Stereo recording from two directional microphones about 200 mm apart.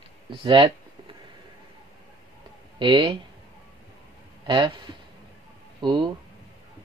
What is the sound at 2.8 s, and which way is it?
Speech, 25° right (ahead or behind).